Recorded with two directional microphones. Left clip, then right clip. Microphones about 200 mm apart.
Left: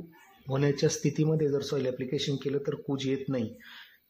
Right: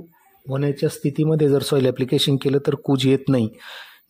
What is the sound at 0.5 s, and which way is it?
Speech, 30° right (ahead or behind).